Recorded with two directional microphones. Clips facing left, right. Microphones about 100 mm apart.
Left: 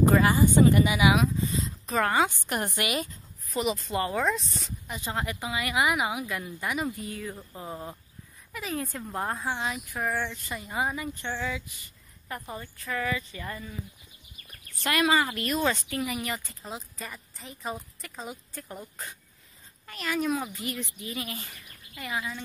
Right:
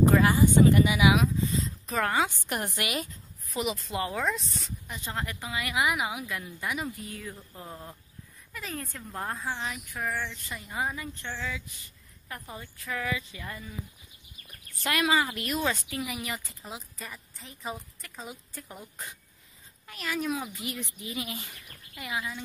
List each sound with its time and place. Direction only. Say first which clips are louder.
0.1 s speech: even; centre (ahead or behind)
7.5 s speech: left 5 dB; 10° left (ahead or behind)
10.3 s speech: left 3 dB; centre (ahead or behind)
12.5 s speech: left 2 dB; 5° right (ahead or behind)
14.9 s speech: left 2 dB; centre (ahead or behind)